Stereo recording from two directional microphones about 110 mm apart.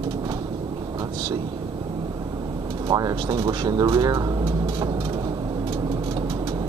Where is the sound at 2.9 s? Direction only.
35° right (ahead or behind).